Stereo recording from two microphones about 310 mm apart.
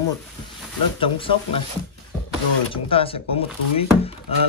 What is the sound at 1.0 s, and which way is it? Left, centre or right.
Speech, centre.